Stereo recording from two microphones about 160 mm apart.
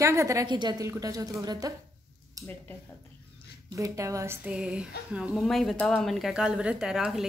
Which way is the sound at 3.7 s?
20° right (ahead or behind).